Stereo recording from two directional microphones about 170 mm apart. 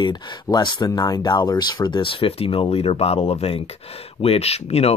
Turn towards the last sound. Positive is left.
turn(degrees=35)  # may be behind; listen again after turning